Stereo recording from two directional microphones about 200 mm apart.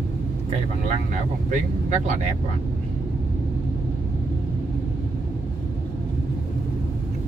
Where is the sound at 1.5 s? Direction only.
40° right (ahead or behind).